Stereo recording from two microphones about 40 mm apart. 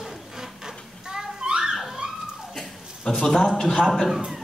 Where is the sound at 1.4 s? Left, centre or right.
Right.